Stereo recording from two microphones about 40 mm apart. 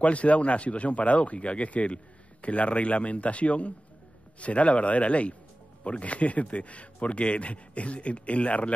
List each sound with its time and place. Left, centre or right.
0.0 s speech: left